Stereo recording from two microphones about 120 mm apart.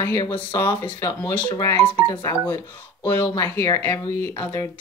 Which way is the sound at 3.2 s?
30° left (ahead or behind).